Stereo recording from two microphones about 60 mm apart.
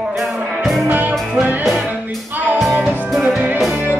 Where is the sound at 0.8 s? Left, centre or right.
Right.